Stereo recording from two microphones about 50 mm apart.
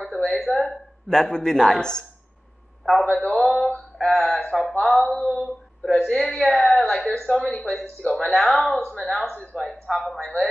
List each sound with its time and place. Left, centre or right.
0.3 s speech: centre
2.8 s a man's voice: centre
4.1 s mantra: centre
5.1 s female singing: left
6.0 s speech: centre
7.8 s female singing: left
8.2 s speech: centre
9.3 s speech: left
9.9 s speech: centre